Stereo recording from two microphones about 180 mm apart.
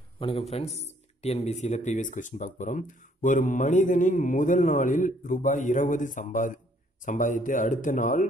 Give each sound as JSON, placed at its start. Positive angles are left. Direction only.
{"t": 0.2, "sound": "speech", "side_deg": 30}